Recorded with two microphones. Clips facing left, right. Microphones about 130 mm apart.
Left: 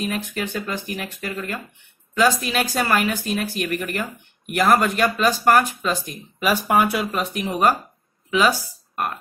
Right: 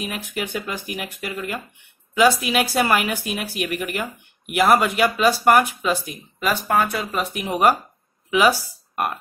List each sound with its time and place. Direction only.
0.0 s speech: 10° right (ahead or behind)
6.7 s speech: 10° left (ahead or behind)
7.4 s speech: 10° right (ahead or behind)